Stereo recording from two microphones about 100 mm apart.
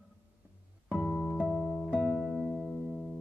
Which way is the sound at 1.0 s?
10° left (ahead or behind).